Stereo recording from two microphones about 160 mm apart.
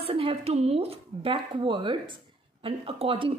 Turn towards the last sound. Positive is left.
turn(degrees=-35)  # may be behind; listen again after turning